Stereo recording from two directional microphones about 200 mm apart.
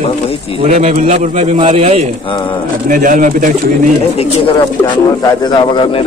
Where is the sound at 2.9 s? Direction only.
40° right (ahead or behind).